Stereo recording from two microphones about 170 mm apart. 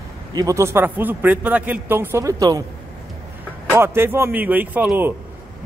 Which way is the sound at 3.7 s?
15° right (ahead or behind).